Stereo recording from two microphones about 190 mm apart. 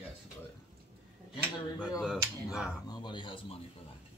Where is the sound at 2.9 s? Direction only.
25° left (ahead or behind).